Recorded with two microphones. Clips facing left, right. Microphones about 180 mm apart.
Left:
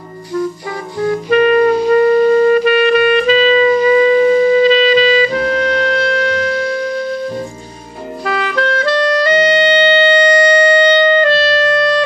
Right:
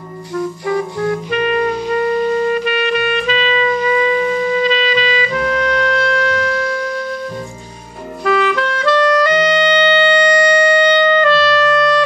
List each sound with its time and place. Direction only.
1.3 s music: 40° left (ahead or behind)
8.5 s music: 40° left (ahead or behind)